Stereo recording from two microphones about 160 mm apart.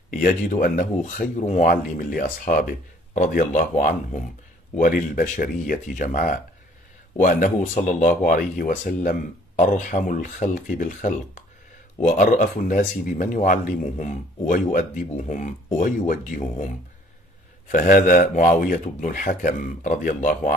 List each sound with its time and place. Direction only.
0.1 s speech: 60° left (ahead or behind)
17.6 s speech: 55° left (ahead or behind)